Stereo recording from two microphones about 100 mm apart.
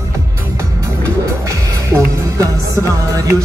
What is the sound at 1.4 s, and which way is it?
Speech, 30° right (ahead or behind).